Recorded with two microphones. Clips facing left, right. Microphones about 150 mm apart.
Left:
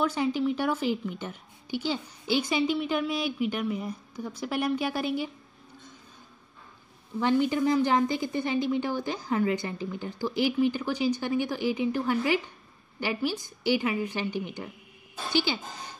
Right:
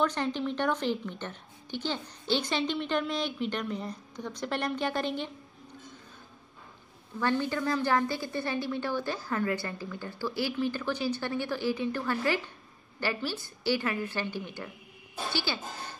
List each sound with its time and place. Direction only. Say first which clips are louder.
0.0 s a woman's voice: left 3 dB; 10° left (ahead or behind)
7.2 s a woman's voice: left 5 dB; 15° left (ahead or behind)